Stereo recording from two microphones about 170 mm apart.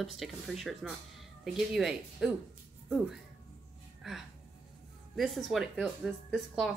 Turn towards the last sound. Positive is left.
turn(degrees=0)  # may be behind; listen again after turning